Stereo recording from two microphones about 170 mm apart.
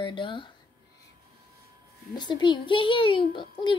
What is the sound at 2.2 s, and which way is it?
A child's voice, 25° left (ahead or behind).